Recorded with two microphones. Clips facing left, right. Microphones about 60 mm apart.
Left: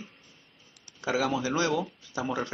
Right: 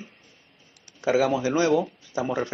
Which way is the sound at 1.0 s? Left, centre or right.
Centre.